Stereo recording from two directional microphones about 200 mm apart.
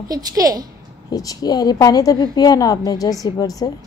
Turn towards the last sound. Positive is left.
turn(degrees=20)  # may be behind; listen again after turning